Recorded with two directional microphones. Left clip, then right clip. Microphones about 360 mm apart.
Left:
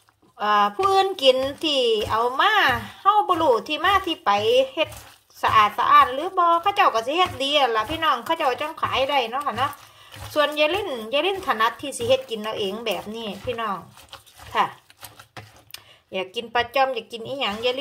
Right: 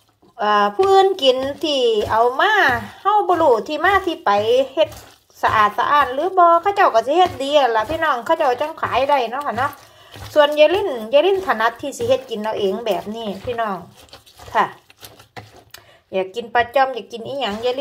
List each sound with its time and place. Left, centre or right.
0.4 s speech: centre
1.8 s speech: left
2.2 s speech: centre
16.1 s speech: centre